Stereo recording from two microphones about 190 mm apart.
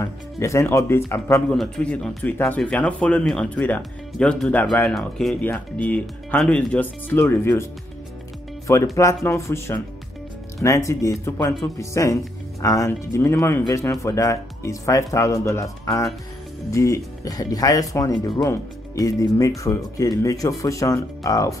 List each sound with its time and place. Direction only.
0.0 s speech: 15° left (ahead or behind)
8.9 s speech: 15° left (ahead or behind)